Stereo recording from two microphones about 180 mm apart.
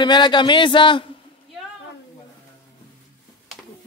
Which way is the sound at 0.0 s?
25° left (ahead or behind).